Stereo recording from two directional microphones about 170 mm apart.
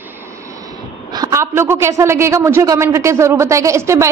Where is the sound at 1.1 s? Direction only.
20° right (ahead or behind).